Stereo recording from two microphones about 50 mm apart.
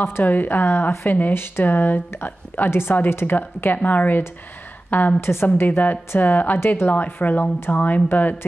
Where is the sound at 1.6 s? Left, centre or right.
Left.